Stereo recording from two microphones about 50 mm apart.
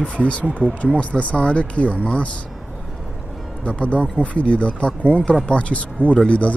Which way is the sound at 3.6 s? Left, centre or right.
Left.